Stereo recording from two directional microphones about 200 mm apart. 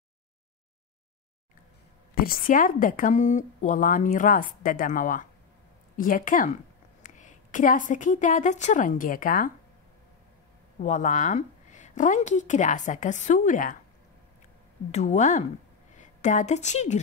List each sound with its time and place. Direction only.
2.1 s a woman's voice: 45° left (ahead or behind)
10.8 s a woman's voice: 40° left (ahead or behind)
14.9 s a woman's voice: 35° left (ahead or behind)